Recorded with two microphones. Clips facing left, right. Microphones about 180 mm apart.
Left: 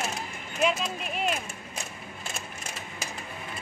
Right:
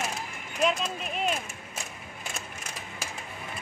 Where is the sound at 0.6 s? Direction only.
Centre (ahead or behind).